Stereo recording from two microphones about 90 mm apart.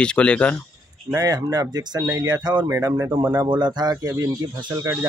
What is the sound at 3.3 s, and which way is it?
Speech, 55° right (ahead or behind).